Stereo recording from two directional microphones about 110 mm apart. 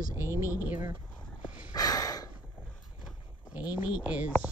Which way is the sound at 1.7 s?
35° left (ahead or behind).